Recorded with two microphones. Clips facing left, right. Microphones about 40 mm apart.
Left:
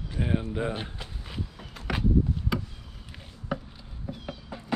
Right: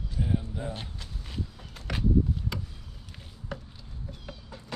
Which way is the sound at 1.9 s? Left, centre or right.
Centre.